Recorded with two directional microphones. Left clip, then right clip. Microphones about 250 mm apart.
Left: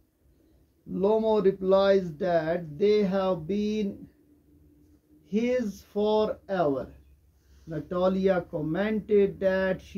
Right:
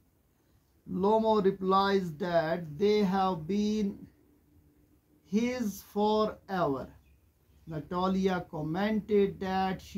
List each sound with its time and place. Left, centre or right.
1.0 s speech: right
5.2 s speech: right